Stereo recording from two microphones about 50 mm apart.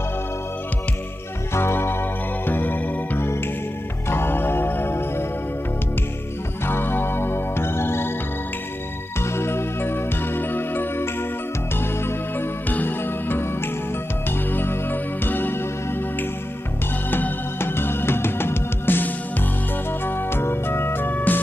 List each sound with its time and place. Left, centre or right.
1.5 s music: left
3.2 s music: left
6.6 s music: left
9.2 s music: left
12.6 s music: left